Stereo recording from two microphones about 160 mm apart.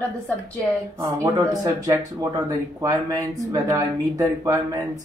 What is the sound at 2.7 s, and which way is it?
Speech, 20° right (ahead or behind).